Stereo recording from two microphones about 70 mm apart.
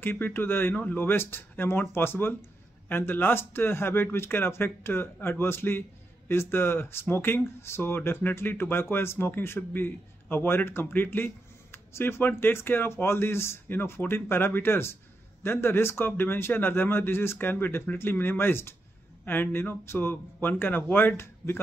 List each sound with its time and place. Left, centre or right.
0.0 s speech: left